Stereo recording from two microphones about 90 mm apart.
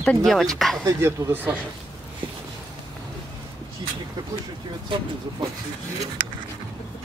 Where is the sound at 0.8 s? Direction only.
25° right (ahead or behind).